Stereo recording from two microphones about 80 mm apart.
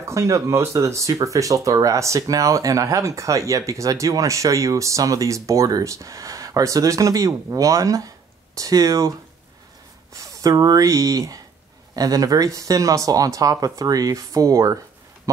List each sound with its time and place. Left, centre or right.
0.0 s speech: right
10.1 s speech: right